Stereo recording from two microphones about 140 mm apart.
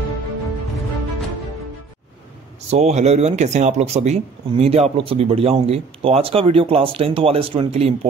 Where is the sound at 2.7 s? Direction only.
55° right (ahead or behind).